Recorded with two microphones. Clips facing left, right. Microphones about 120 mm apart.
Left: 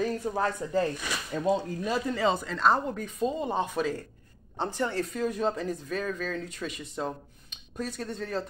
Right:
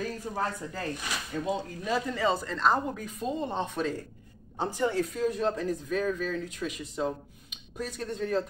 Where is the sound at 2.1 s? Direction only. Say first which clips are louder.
Left 2 dB; 20° left (ahead or behind).